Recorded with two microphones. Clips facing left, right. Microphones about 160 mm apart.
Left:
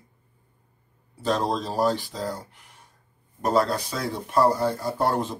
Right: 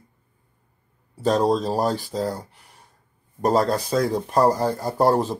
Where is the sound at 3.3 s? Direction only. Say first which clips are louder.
Right 3 dB; 40° right (ahead or behind).